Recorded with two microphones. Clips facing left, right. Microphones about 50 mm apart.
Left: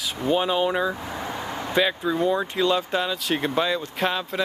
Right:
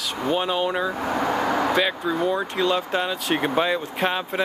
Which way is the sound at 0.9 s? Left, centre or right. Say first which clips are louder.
Right 8 dB; right.